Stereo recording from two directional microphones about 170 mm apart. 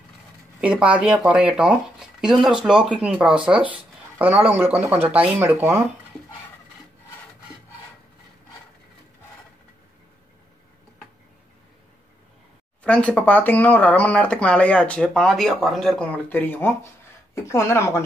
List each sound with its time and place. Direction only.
0.6 s speech: 5° right (ahead or behind)
12.8 s speech: 5° left (ahead or behind)